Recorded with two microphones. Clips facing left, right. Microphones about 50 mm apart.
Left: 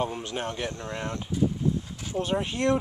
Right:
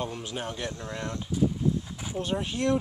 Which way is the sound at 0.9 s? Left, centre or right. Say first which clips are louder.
Left 1 dB; left.